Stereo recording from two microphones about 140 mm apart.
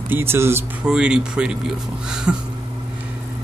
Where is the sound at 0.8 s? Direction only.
5° right (ahead or behind).